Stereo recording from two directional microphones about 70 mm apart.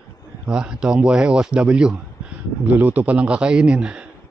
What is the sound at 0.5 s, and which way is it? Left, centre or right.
Speech, centre.